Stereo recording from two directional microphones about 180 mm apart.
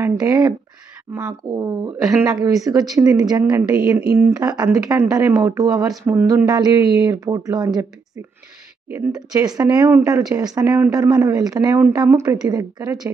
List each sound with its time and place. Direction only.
0.0 s speech: 20° right (ahead or behind)
4.0 s speech: 60° right (ahead or behind)
4.3 s speech: 20° right (ahead or behind)
8.9 s speech: 20° right (ahead or behind)